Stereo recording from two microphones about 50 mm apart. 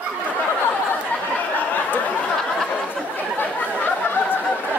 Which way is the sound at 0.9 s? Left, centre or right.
Left.